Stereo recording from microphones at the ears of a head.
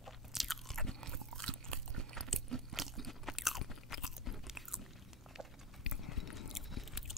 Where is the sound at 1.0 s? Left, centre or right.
Right.